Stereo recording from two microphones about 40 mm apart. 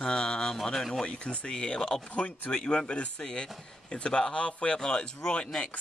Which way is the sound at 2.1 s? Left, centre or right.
Left.